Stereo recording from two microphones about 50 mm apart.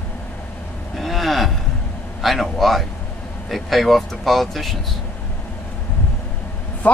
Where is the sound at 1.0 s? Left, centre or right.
Centre.